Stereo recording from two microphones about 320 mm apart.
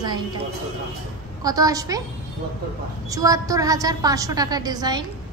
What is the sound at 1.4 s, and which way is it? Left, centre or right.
Speech, centre.